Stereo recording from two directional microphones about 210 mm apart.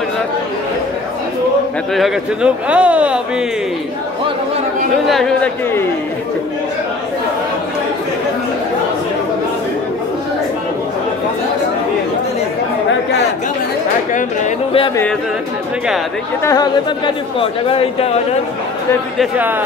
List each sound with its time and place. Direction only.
2.0 s speech: 5° right (ahead or behind)
5.0 s speech: centre (ahead or behind)
14.1 s speech: 30° left (ahead or behind)
16.4 s a man's voice: 20° left (ahead or behind)
19.1 s speech: 10° right (ahead or behind)